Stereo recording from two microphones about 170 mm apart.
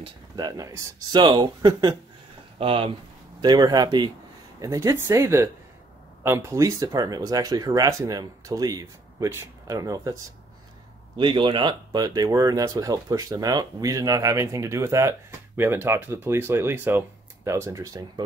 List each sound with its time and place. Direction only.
0.0 s speech: 25° right (ahead or behind)
11.1 s speech: 30° right (ahead or behind)